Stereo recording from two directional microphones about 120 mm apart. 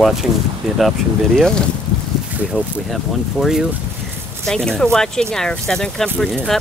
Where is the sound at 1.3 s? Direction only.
5° left (ahead or behind).